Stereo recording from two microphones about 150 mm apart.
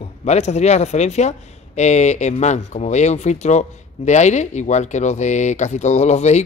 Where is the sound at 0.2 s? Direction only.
45° left (ahead or behind).